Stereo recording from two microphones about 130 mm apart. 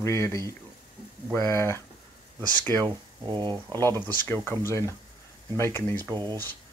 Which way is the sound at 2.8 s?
35° right (ahead or behind).